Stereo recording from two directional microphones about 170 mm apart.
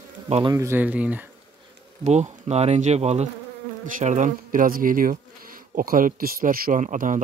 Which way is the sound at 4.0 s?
50° right (ahead or behind).